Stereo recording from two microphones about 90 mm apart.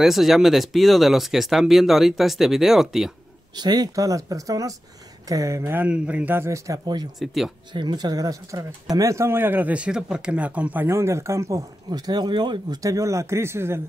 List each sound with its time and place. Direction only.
0.0 s speech: 5° right (ahead or behind)
3.5 s speech: 50° right (ahead or behind)
5.7 s speech: 20° right (ahead or behind)
7.2 s speech: centre (ahead or behind)
7.7 s speech: 55° right (ahead or behind); by 13.7 s 30° right (ahead or behind)